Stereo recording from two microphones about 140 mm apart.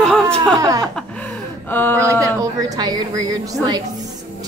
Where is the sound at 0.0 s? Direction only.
5° left (ahead or behind).